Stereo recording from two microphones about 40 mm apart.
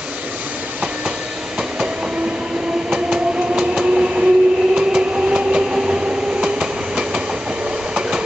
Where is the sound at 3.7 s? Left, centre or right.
Right.